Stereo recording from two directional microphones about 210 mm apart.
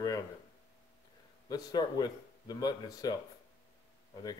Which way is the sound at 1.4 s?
20° left (ahead or behind).